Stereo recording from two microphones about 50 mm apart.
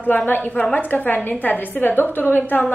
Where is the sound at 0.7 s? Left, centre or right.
Left.